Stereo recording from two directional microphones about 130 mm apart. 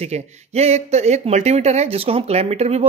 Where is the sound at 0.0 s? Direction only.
55° right (ahead or behind).